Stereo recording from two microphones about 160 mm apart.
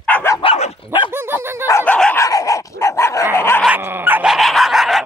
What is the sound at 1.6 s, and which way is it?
Dog, 20° left (ahead or behind).